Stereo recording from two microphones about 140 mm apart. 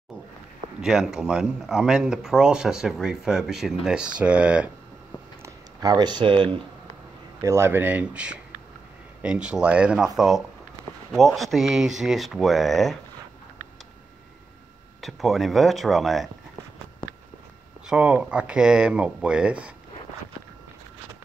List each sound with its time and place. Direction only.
0.7 s speech: 5° right (ahead or behind)
5.4 s speech: 30° right (ahead or behind)
7.4 s speech: 20° right (ahead or behind); by 12.9 s centre (ahead or behind)
15.0 s speech: centre (ahead or behind)
17.8 s speech: 10° right (ahead or behind)